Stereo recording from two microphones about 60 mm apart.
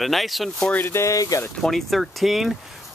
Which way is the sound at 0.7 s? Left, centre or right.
Left.